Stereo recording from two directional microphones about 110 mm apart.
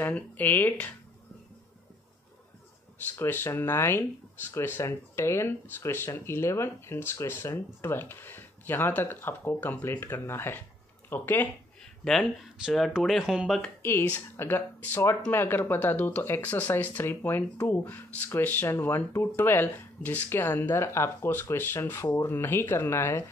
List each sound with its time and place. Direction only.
0.0 s speech: 15° left (ahead or behind)
3.2 s speech: 20° left (ahead or behind)
12.0 s speech: centre (ahead or behind)
13.8 s speech: 20° left (ahead or behind)